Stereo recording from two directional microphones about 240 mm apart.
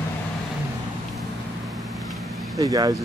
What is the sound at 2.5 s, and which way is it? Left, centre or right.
Speech, centre.